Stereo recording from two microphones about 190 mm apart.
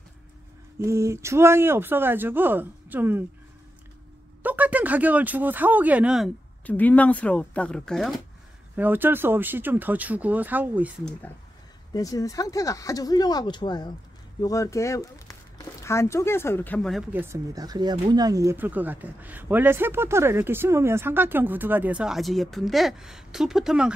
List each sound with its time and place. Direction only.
0.7 s speech: 15° right (ahead or behind)
4.4 s speech: 10° right (ahead or behind)
6.6 s speech: 10° left (ahead or behind)
8.7 s speech: 10° right (ahead or behind)
11.9 s speech: 20° left (ahead or behind)
17.1 s speech: 10° right (ahead or behind)